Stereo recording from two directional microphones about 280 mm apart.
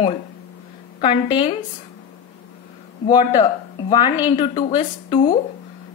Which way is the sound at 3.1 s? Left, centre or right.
Centre.